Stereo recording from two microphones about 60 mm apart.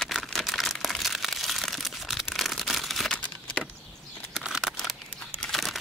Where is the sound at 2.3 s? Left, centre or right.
Centre.